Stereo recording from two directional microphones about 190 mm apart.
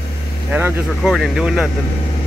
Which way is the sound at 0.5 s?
5° right (ahead or behind).